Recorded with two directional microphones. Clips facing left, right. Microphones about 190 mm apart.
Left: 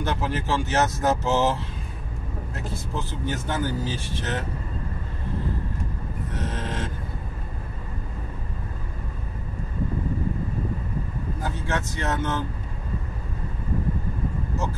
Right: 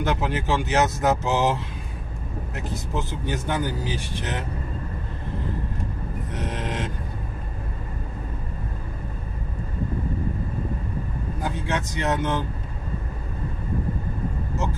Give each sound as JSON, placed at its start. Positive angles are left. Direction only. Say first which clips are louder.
{"t": 0.0, "sound": "speech", "louder": "right 2 dB", "side_deg": -15}
{"t": 6.3, "sound": "a sound", "louder": "right 2 dB", "side_deg": -15}
{"t": 11.4, "sound": "speech", "louder": "right 2 dB", "side_deg": -15}